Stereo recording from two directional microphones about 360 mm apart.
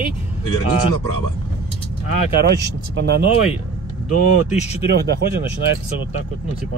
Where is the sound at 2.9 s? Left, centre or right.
Right.